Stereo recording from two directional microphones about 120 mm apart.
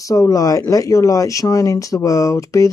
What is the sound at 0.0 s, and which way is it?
Speech, 30° left (ahead or behind).